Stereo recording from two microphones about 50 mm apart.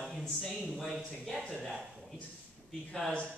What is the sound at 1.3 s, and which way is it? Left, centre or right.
Speech, centre.